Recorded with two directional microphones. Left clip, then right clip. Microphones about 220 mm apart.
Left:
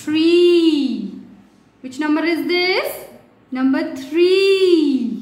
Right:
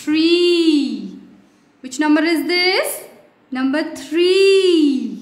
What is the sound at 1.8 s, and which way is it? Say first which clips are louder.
A woman's voice: right 3 dB; 45° right (ahead or behind).